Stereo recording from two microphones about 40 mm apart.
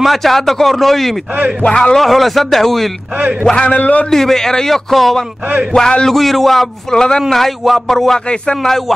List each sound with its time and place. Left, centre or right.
0.0 s speech: centre
1.6 s speech: left
2.0 s speech: centre
3.6 s a man's voice: left
4.1 s speech: centre
5.8 s speech: left
6.0 s speech: centre